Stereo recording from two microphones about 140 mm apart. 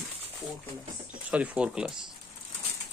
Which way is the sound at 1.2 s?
10° right (ahead or behind).